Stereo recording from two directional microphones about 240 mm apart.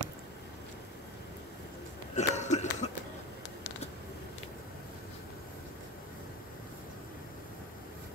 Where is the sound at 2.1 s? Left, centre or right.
Left.